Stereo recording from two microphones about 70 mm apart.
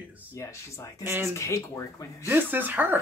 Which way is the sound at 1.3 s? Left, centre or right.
Left.